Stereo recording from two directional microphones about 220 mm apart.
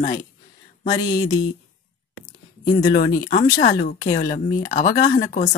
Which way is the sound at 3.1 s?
40° left (ahead or behind).